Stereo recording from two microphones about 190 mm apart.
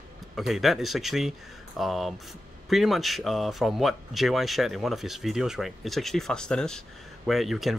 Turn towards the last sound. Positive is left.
turn(degrees=0)  # may be behind; listen again after turning